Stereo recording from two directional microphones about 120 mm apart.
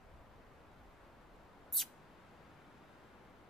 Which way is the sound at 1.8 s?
5° left (ahead or behind).